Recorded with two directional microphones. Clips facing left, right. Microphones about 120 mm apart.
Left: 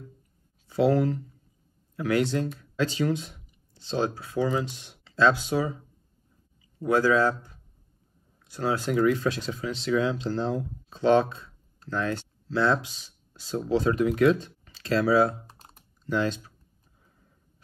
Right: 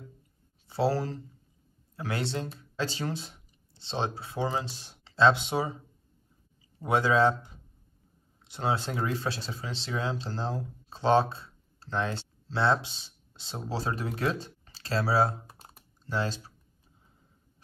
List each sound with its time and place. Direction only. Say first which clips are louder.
0.7 s speech: left 5 dB; 30° right (ahead or behind)
6.8 s speech: left 2 dB; 25° right (ahead or behind)